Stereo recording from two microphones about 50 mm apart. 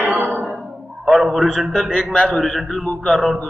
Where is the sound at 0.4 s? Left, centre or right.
Right.